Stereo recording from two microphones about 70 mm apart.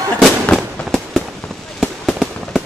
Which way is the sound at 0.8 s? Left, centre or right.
Centre.